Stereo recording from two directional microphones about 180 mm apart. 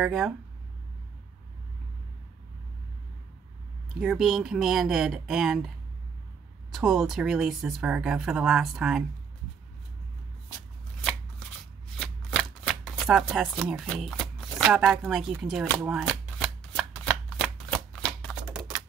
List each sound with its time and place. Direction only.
0.0 s speech: centre (ahead or behind)
4.0 s speech: 5° right (ahead or behind)
6.7 s speech: centre (ahead or behind)
12.0 s shuffling cards: 5° left (ahead or behind)
15.0 s speech: centre (ahead or behind)
15.8 s shuffling cards: 5° right (ahead or behind)